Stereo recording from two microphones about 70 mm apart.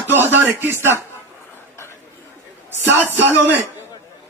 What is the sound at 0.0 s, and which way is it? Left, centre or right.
Speech, right.